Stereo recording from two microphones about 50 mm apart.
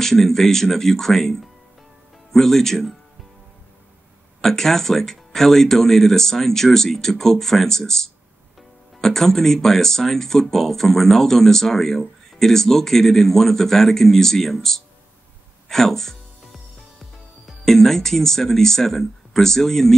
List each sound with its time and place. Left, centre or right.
0.0 s a man's voice: centre
4.4 s a man's voice: centre
15.7 s music: centre
17.5 s a man's voice: centre